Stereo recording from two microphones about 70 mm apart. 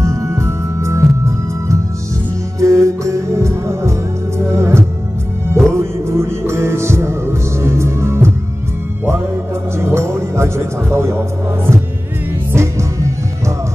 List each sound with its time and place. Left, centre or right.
0.0 s music: right
2.6 s music: right
9.8 s music: right